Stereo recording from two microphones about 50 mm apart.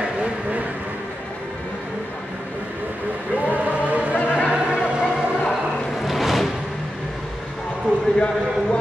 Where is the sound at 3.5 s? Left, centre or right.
Right.